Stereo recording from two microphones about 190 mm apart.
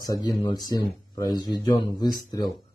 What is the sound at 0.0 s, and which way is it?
Speech, 20° left (ahead or behind).